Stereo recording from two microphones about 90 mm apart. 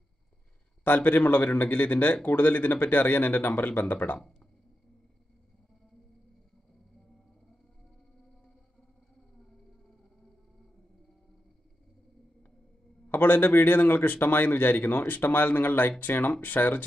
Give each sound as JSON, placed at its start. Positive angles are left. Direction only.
{"t": 0.8, "sound": "speech", "side_deg": 20}
{"t": 13.1, "sound": "speech", "side_deg": 20}